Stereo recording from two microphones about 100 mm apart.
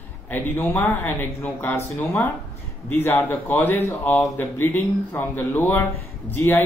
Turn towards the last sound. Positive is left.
turn(degrees=20)  # may be behind; listen again after turning